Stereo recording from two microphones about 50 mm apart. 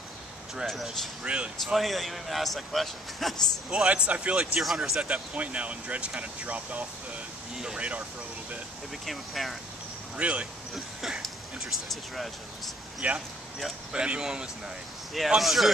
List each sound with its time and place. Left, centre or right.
1.2 s speech: right
1.7 s a man's voice: centre
3.7 s speech: right
4.7 s speech: centre
5.0 s speech: right
7.5 s speech: centre
9.0 s a man's voice: centre
10.1 s speech: right
10.7 s a sound: centre
11.2 s speech: centre
13.0 s speech: right
15.1 s a man's voice: centre